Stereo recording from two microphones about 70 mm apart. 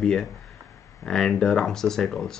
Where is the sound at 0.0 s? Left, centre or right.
Centre.